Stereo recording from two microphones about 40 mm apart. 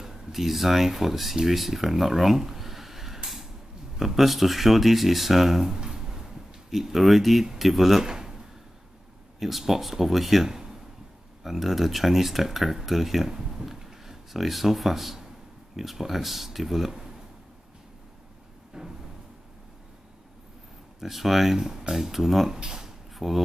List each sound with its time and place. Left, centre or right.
0.0 s speech: centre
5.9 s a sound: centre
7.5 s speech: centre
9.4 s speech: centre
18.7 s cupboard open or close: centre
21.0 s speech: centre
22.7 s a sound: centre
23.1 s speech: centre